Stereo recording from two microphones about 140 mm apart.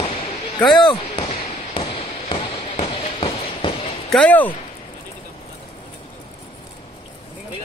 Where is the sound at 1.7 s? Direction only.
40° left (ahead or behind).